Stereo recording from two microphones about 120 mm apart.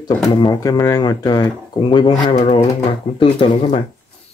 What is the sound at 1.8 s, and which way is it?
Speech, 50° left (ahead or behind).